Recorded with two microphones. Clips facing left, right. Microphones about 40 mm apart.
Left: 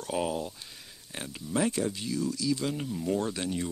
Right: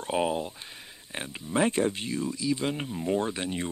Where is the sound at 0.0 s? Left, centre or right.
Right.